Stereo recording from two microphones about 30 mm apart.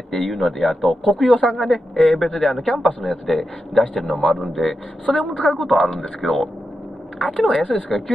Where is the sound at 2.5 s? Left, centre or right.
Centre.